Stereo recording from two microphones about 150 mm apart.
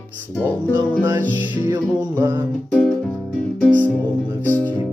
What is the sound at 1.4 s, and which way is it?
Music, 10° right (ahead or behind).